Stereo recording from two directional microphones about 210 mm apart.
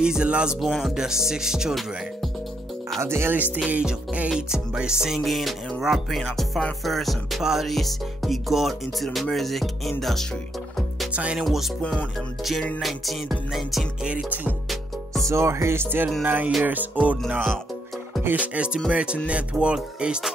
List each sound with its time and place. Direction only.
0.0 s music: 5° right (ahead or behind)
3.0 s music: 10° right (ahead or behind)